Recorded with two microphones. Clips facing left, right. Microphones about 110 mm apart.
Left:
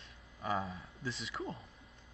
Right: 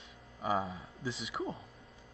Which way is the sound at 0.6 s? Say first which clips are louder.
Right 2 dB; 25° right (ahead or behind).